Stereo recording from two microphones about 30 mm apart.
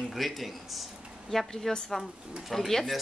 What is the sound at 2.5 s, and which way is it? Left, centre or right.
Speech, centre.